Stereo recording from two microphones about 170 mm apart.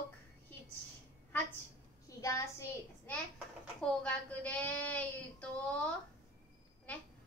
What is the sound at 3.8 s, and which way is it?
A woman's voice, 5° left (ahead or behind).